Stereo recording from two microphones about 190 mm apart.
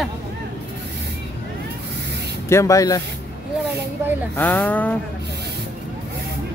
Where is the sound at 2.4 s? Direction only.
15° left (ahead or behind).